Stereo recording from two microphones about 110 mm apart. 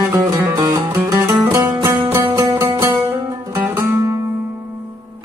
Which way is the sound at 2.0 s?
20° right (ahead or behind).